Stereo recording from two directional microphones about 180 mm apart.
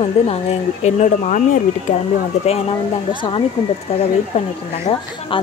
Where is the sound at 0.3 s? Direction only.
35° left (ahead or behind).